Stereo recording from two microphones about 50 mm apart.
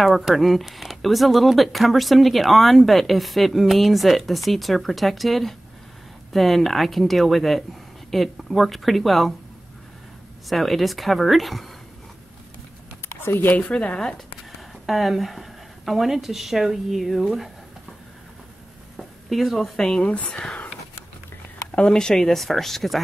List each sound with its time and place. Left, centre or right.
0.0 s speech: centre
10.5 s speech: centre
13.2 s speech: left
13.6 s speech: left
14.5 s speech: centre
18.9 s a sound: centre
19.8 s speech: centre
21.7 s speech: centre